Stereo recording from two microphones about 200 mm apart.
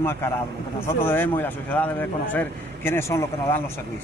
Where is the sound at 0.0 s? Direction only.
10° left (ahead or behind).